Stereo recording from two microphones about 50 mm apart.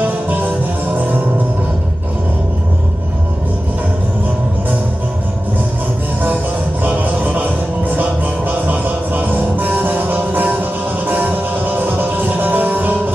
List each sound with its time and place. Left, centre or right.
6.8 s music: right